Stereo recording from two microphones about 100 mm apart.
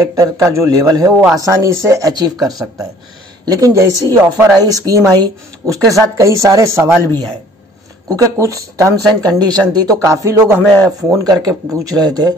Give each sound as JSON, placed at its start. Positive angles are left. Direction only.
{"t": 0.1, "sound": "speech", "side_deg": -30}
{"t": 8.1, "sound": "speech", "side_deg": -35}
{"t": 10.0, "sound": "speech", "side_deg": -30}